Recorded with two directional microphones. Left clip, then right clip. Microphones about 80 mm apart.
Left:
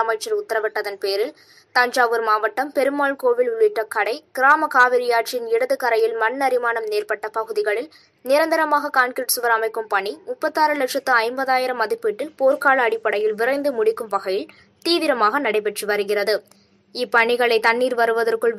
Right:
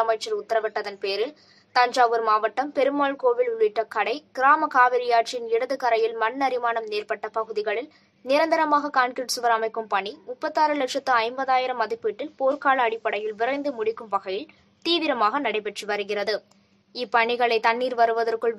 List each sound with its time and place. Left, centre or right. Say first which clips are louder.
0.6 s a woman's voice: left 3 dB; left